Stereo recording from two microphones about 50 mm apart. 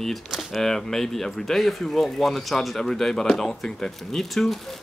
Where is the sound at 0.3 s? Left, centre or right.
Centre.